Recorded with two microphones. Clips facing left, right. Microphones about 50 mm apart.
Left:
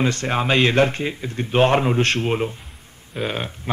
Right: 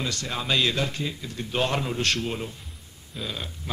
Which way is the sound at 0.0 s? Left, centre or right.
Left.